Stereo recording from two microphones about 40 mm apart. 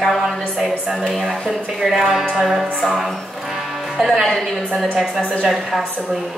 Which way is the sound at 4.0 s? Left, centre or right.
Centre.